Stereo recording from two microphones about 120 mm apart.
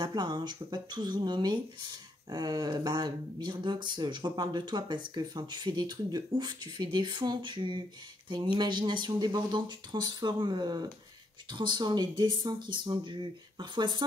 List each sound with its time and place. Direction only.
0.0 s speech: 35° right (ahead or behind)